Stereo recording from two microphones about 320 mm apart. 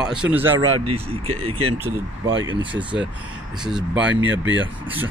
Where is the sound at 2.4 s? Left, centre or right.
Centre.